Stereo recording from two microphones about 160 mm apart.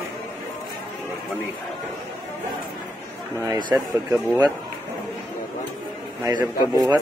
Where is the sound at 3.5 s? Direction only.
25° right (ahead or behind).